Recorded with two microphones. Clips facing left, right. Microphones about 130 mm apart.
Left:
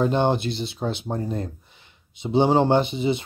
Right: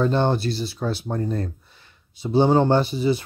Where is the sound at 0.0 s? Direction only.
15° left (ahead or behind).